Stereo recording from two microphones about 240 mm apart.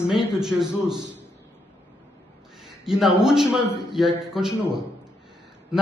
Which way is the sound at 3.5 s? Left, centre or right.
Left.